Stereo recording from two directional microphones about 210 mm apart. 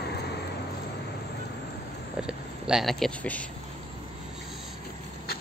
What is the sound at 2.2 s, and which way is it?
Speech, 5° right (ahead or behind).